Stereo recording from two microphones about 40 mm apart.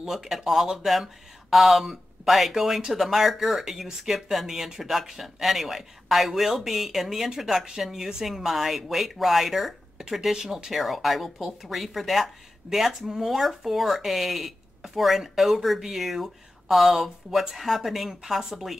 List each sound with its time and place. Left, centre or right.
0.0 s speech: centre
18.2 s speech: centre